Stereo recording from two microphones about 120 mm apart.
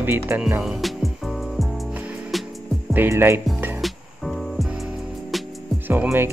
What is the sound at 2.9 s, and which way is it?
Music, 20° right (ahead or behind).